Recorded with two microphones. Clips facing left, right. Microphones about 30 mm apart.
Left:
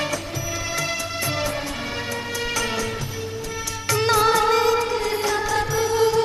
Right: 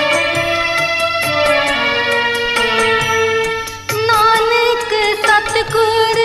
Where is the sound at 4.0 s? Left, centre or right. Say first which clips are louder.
Right 7 dB; right.